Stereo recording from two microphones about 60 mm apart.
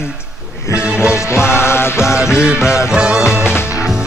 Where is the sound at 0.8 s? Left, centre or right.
Centre.